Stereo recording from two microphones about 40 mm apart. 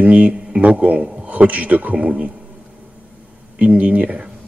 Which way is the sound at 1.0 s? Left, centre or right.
Right.